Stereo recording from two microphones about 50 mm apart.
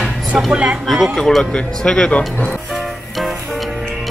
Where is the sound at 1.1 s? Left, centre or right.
Centre.